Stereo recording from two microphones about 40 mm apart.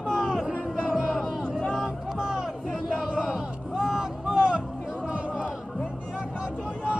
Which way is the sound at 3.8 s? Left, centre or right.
Centre.